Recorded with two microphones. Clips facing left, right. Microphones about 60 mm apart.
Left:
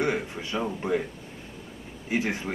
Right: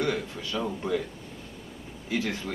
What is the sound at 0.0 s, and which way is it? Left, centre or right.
Speech, left.